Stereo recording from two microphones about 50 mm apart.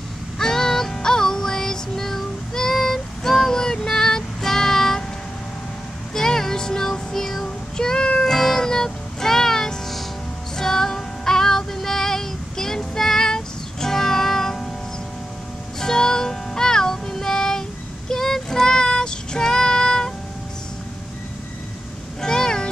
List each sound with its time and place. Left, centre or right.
0.4 s music: centre
6.1 s child singing: centre
8.3 s music: centre
10.5 s female singing: centre
15.8 s music: centre
18.1 s child singing: centre
22.2 s meow: centre